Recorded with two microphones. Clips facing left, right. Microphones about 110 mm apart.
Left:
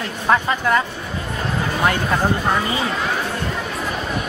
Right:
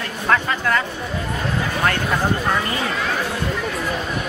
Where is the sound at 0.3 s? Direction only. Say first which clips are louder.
Left 2 dB; 20° left (ahead or behind).